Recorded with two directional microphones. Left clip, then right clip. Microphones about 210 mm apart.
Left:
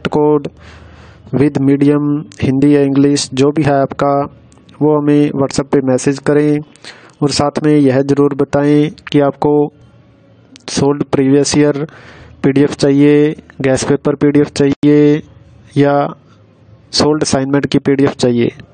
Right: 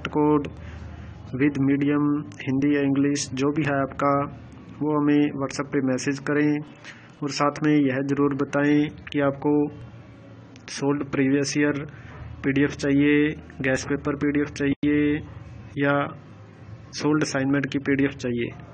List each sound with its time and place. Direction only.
0.0 s speech: 65° left (ahead or behind)